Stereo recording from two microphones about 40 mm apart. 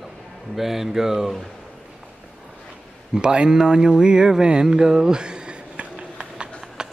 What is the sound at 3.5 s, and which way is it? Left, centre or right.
Mantra, centre.